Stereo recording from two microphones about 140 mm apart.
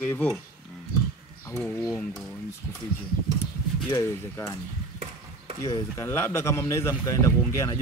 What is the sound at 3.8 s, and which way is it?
Speech, 20° left (ahead or behind).